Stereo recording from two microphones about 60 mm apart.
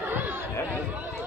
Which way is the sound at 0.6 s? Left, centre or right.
Right.